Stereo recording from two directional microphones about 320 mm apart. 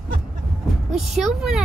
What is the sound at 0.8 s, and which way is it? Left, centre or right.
Speech, centre.